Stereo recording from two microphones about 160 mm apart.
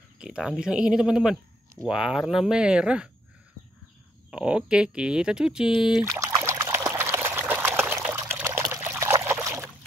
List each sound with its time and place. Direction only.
0.2 s speech: 5° right (ahead or behind)
4.3 s speech: 5° right (ahead or behind)
6.0 s trickle: 20° right (ahead or behind)